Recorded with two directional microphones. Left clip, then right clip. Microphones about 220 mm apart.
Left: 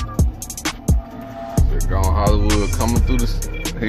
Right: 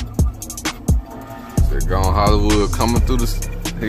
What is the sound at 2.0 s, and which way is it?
Music, 15° right (ahead or behind).